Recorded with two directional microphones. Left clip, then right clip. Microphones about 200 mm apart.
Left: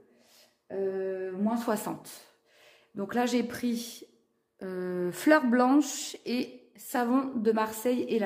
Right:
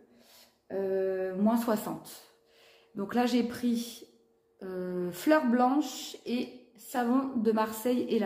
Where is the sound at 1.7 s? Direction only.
30° left (ahead or behind).